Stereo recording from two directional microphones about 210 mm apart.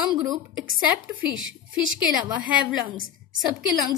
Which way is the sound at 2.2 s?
10° right (ahead or behind).